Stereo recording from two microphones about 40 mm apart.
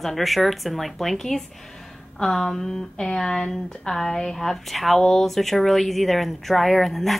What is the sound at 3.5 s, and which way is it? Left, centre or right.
A woman's voice, centre.